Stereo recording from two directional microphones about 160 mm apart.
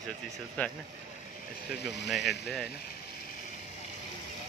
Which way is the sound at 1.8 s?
90° left.